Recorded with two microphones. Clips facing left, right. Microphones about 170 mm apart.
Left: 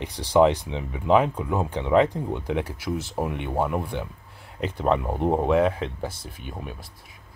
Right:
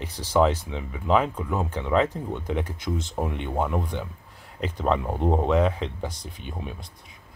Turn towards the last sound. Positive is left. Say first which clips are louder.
# even
turn(degrees=5)  # may be behind; listen again after turning